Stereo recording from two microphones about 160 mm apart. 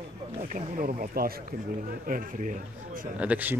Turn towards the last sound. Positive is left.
turn(degrees=-10)  # may be behind; listen again after turning